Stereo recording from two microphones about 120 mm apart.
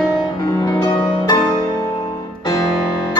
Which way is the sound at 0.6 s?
35° left (ahead or behind).